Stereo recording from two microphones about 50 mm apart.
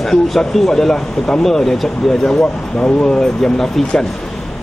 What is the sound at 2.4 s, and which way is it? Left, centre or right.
Speech, left.